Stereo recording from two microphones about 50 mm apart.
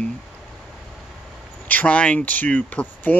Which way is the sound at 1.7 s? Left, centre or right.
Left.